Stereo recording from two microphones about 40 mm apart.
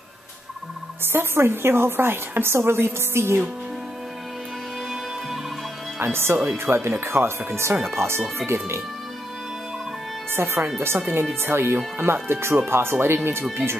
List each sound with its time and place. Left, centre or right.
1.0 s a woman's voice: right
5.9 s speech: right
6.6 s speech: right
10.3 s a woman's voice: right